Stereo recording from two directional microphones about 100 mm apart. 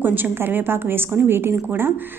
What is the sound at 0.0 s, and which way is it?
A woman's voice, 20° right (ahead or behind).